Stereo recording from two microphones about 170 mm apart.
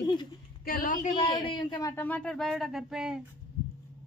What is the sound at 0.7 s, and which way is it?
Speech, 55° left (ahead or behind).